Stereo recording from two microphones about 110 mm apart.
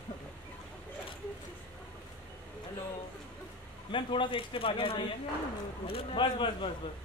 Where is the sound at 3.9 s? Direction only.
50° left (ahead or behind).